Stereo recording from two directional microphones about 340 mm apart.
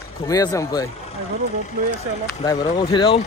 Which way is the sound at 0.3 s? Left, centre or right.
Centre.